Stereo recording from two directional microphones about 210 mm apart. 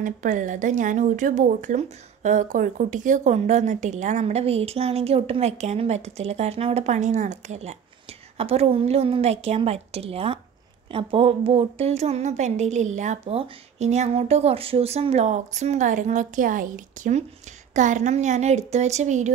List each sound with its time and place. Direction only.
0.0 s a woman's voice: 35° right (ahead or behind)